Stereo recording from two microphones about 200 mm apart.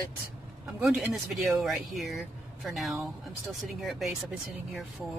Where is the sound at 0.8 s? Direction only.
Centre (ahead or behind).